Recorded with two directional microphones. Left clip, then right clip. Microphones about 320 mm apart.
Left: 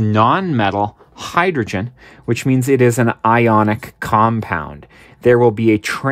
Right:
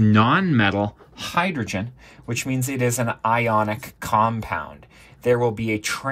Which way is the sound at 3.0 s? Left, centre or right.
Left.